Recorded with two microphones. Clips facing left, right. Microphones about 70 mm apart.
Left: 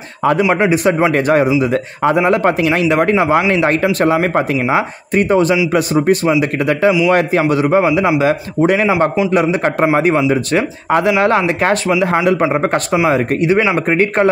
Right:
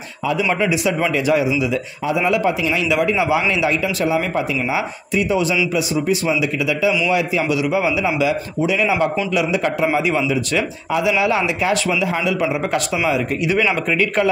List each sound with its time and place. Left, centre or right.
0.2 s a man's voice: left
0.6 s a man's voice: left